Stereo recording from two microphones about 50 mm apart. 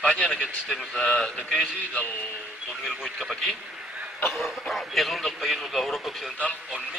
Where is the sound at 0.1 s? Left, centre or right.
Centre.